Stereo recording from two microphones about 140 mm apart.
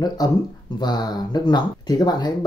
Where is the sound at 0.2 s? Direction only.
25° left (ahead or behind).